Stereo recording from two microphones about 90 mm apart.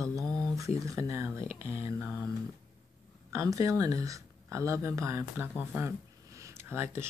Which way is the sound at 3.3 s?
35° right (ahead or behind).